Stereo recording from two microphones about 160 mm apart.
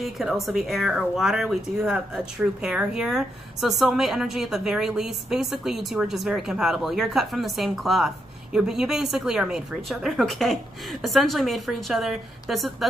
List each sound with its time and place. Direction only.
0.0 s speech: centre (ahead or behind)